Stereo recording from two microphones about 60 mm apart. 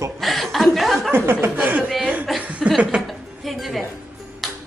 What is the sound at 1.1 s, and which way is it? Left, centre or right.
Speech, right.